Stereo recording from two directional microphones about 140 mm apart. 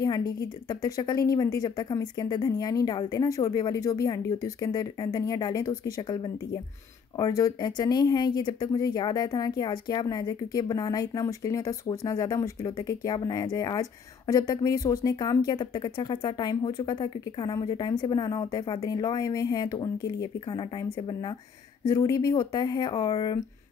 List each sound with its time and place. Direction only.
0.0 s speech: 30° left (ahead or behind)